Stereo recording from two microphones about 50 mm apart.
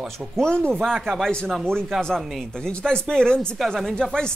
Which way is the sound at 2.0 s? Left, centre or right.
Centre.